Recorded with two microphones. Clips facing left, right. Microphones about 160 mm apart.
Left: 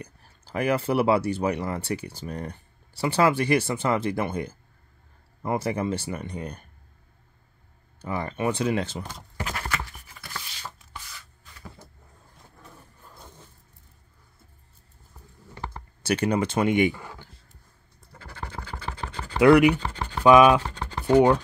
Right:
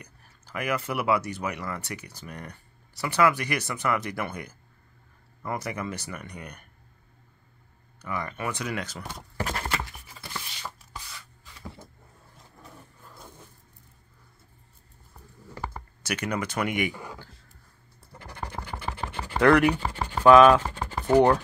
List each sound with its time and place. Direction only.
0.0 s speech: 30° left (ahead or behind)
8.0 s speech: 30° left (ahead or behind)
9.4 s a sound: 30° right (ahead or behind)
16.0 s speech: 30° left (ahead or behind)
16.9 s speech: 15° right (ahead or behind)
18.2 s a sound: 15° right (ahead or behind)
19.4 s speech: 10° left (ahead or behind)
19.8 s scratch: 10° right (ahead or behind)
20.2 s speech: 10° left (ahead or behind)